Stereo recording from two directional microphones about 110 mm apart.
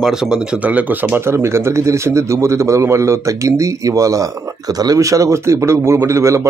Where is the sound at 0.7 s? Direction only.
15° right (ahead or behind).